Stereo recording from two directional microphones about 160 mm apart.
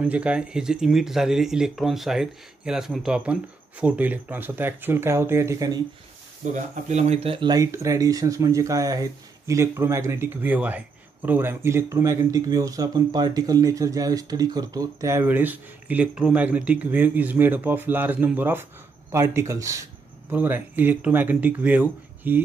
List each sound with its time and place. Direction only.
0.0 s speech: 10° right (ahead or behind)
6.4 s speech: 50° right (ahead or behind); by 22.4 s 10° right (ahead or behind)